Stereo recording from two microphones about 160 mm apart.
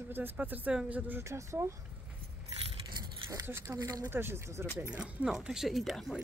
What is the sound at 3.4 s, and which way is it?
A woman's voice, 15° right (ahead or behind).